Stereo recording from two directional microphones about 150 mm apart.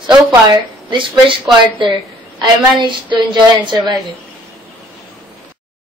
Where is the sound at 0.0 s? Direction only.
25° right (ahead or behind).